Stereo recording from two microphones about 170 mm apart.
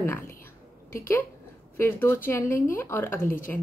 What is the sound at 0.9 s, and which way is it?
Speech, 15° left (ahead or behind).